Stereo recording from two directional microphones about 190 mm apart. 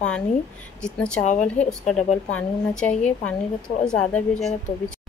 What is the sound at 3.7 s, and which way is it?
Speech, 55° left (ahead or behind).